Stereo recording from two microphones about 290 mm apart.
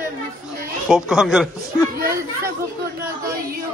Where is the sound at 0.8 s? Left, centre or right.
Centre.